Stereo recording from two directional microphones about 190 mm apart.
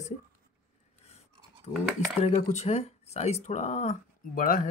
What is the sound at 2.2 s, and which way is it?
Speech, 35° left (ahead or behind).